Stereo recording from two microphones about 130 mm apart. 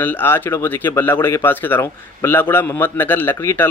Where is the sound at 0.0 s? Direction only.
15° left (ahead or behind).